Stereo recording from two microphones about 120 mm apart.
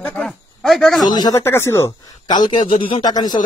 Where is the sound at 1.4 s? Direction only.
20° left (ahead or behind).